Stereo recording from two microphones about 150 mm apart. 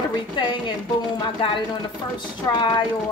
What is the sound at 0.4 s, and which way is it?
A woman's voice, 30° left (ahead or behind).